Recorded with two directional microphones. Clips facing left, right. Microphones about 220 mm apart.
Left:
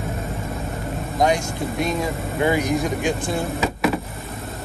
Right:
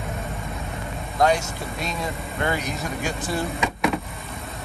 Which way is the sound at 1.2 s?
15° left (ahead or behind).